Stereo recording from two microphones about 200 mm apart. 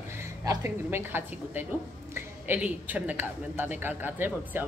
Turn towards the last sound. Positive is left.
turn(degrees=-10)  # may be behind; listen again after turning